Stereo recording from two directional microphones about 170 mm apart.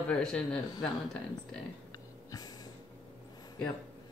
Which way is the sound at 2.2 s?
20° left (ahead or behind).